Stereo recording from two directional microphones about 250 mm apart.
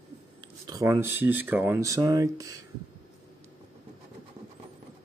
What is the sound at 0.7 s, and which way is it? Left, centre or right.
Speech, centre.